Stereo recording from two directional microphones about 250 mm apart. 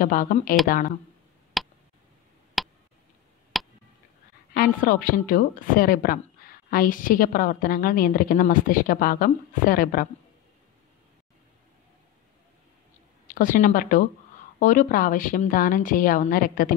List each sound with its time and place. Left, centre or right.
0.0 s a woman's voice: left
1.6 s tick: centre
2.6 s a sound: centre
4.6 s a woman's voice: left
13.3 s a woman's voice: left